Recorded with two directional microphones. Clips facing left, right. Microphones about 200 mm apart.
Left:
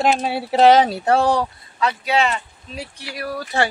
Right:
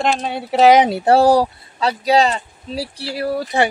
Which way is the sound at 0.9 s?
30° right (ahead or behind).